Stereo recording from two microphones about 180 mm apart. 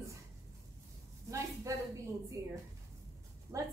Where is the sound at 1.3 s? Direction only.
15° right (ahead or behind).